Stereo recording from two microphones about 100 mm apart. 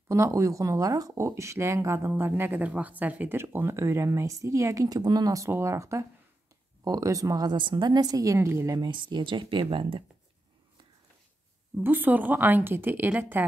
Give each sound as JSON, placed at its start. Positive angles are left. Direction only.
{"t": 0.1, "sound": "a woman's voice", "side_deg": -30}
{"t": 8.7, "sound": "speech", "side_deg": -50}
{"t": 11.7, "sound": "speech", "side_deg": -20}